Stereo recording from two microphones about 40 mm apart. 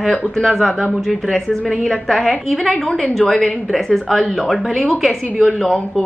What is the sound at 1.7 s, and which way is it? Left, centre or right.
A woman's voice, centre.